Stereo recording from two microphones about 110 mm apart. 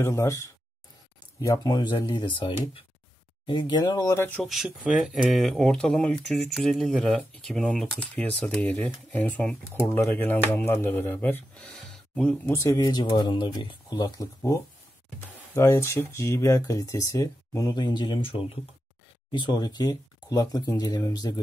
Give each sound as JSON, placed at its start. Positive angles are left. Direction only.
{"t": 0.0, "sound": "speech", "side_deg": 25}
{"t": 4.4, "sound": "speech", "side_deg": 0}
{"t": 12.5, "sound": "speech", "side_deg": 30}
{"t": 13.1, "sound": "speech", "side_deg": 45}
{"t": 14.0, "sound": "speech", "side_deg": 30}
{"t": 19.3, "sound": "speech", "side_deg": 40}